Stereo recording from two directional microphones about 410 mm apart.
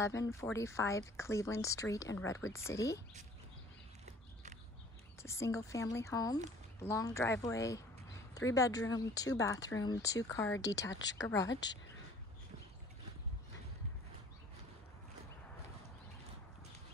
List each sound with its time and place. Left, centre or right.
0.0 s speech: centre
5.2 s speech: centre